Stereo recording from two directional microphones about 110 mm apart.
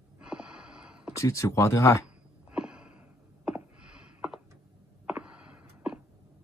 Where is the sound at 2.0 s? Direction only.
10° right (ahead or behind).